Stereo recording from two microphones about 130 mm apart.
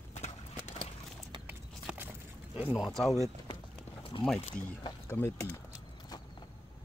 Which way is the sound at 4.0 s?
40° left (ahead or behind).